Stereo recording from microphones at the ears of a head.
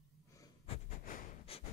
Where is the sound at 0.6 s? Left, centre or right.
Left.